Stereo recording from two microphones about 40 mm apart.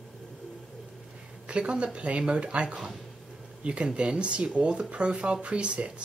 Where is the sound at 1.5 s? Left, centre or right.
Right.